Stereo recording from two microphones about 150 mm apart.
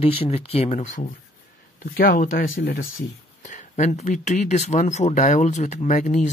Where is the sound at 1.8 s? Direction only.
75° left (ahead or behind).